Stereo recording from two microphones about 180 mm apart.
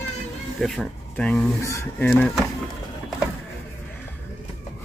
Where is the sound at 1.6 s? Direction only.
15° left (ahead or behind).